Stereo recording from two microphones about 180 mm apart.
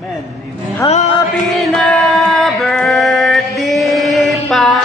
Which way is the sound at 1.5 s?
Centre (ahead or behind).